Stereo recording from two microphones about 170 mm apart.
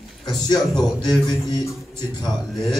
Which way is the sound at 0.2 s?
25° left (ahead or behind).